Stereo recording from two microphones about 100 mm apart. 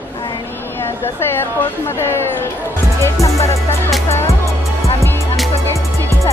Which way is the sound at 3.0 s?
30° left (ahead or behind).